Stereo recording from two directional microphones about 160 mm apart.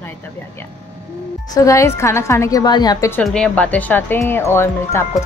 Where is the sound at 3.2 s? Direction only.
5° left (ahead or behind).